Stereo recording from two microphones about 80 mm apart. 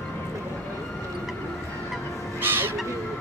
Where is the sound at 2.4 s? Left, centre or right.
Right.